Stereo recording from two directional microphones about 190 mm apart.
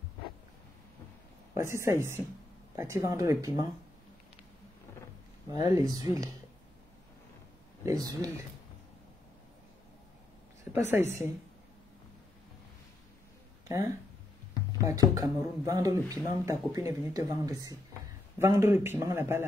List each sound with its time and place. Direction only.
1.5 s speech: 15° right (ahead or behind)
5.7 s speech: 15° right (ahead or behind)
7.8 s speech: 20° right (ahead or behind)
10.6 s a sound: 10° right (ahead or behind)
13.7 s speech: 15° right (ahead or behind)